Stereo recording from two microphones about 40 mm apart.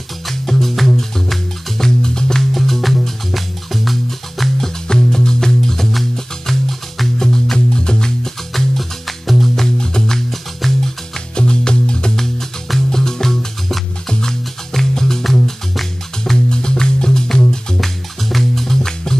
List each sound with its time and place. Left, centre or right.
0.3 s music: centre
4.8 s music: centre
8.7 s music: centre
9.8 s music: centre
10.6 s music: centre
11.3 s music: left
12.2 s music: centre
16.4 s music: centre
17.7 s music: centre